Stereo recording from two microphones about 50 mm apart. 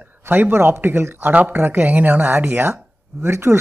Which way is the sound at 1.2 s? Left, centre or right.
Right.